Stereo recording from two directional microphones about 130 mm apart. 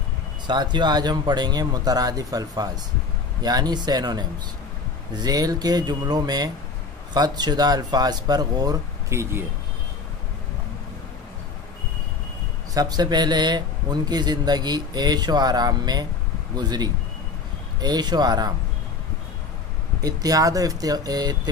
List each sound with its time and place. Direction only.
0.5 s speech: 35° right (ahead or behind); by 9.5 s 20° right (ahead or behind)
12.7 s speech: 30° right (ahead or behind)
20.0 s speech: 30° right (ahead or behind)